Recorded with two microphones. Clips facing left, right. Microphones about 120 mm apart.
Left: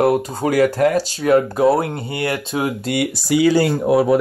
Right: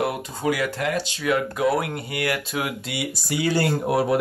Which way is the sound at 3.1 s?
90° left.